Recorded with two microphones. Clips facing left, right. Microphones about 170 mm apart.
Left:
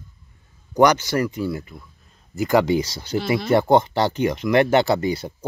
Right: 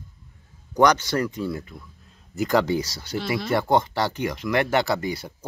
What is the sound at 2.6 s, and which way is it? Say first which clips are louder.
Speech: left 4 dB; 20° left (ahead or behind).